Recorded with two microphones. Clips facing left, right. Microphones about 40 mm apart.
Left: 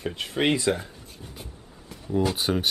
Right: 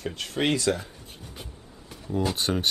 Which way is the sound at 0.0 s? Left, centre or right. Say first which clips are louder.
Left 2 dB; centre.